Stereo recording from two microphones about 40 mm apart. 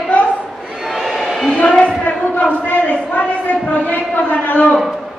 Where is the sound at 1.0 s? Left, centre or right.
Centre.